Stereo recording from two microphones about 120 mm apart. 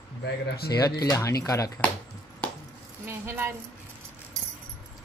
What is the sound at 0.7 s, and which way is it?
Speech, 30° left (ahead or behind).